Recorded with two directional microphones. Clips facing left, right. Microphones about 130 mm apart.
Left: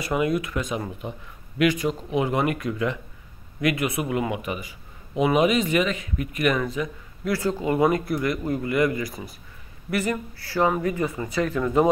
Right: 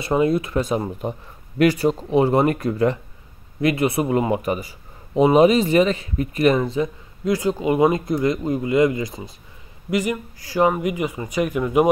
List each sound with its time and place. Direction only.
0.0 s a man's voice: 30° right (ahead or behind)
7.3 s speech: 15° right (ahead or behind)